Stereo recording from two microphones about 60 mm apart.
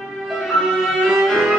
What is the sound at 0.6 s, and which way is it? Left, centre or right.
Violin, centre.